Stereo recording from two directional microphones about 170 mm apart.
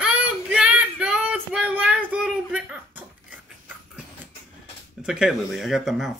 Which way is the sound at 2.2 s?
5° right (ahead or behind).